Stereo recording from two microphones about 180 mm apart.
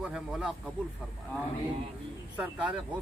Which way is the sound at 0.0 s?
5° right (ahead or behind).